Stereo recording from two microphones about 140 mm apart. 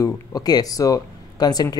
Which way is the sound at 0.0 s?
30° left (ahead or behind).